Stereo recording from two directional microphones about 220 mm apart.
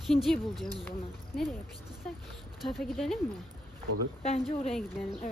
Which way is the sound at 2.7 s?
Centre (ahead or behind).